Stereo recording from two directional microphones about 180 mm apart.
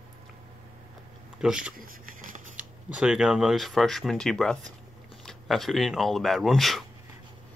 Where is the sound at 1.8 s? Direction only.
50° right (ahead or behind).